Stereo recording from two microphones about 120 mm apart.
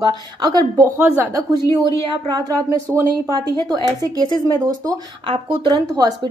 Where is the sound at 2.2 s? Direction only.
30° right (ahead or behind).